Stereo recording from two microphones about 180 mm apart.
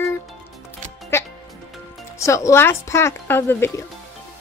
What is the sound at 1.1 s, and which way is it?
Music, 15° left (ahead or behind).